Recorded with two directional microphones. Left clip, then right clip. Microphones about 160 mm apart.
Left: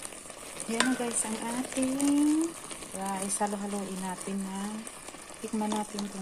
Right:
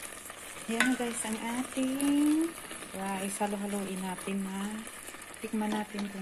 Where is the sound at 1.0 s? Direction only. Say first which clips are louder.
Left 1 dB; centre (ahead or behind); by 6.0 s 20° left (ahead or behind).